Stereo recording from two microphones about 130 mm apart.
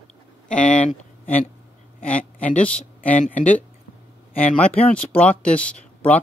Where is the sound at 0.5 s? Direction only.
10° left (ahead or behind).